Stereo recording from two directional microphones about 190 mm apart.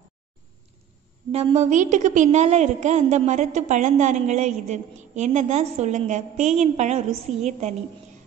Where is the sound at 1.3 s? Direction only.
35° right (ahead or behind).